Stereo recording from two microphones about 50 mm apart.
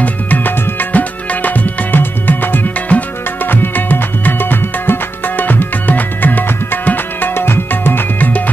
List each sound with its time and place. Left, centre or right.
0.0 s music: left